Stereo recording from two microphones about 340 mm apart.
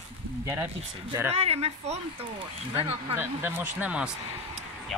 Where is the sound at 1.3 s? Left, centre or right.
Centre.